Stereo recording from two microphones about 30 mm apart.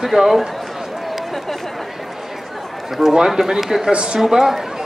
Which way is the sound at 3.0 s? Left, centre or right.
Centre.